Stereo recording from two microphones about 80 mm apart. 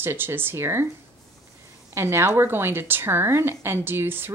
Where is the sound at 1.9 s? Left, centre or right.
Right.